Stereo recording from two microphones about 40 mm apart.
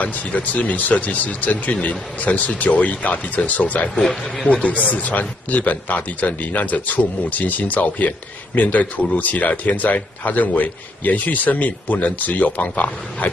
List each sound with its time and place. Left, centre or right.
0.0 s speech: left
3.9 s a man's voice: centre
4.6 s a man's voice: left